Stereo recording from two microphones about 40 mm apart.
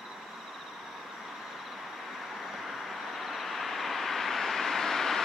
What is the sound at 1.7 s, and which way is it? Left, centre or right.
Vehicle, centre.